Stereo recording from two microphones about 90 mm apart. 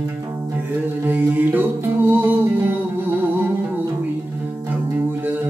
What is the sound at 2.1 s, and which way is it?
Music, 25° right (ahead or behind).